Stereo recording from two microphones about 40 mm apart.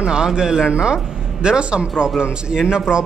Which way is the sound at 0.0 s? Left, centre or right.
Right.